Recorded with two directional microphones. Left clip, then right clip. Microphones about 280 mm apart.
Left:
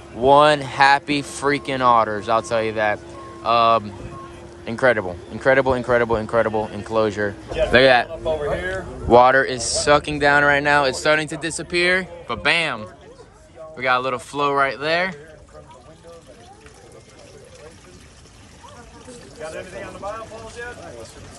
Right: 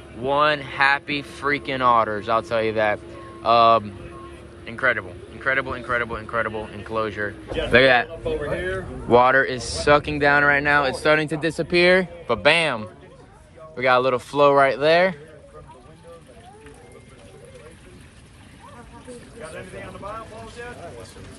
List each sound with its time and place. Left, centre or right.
0.2 s speech: centre
9.1 s speech: centre